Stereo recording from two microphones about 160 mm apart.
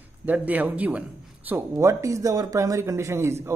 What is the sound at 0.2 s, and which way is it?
A man's voice, 10° right (ahead or behind).